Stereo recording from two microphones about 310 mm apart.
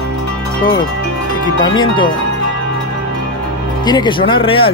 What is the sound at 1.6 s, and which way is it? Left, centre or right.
Speech, centre.